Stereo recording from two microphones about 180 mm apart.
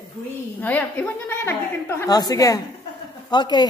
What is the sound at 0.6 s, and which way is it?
A woman's voice, 10° left (ahead or behind).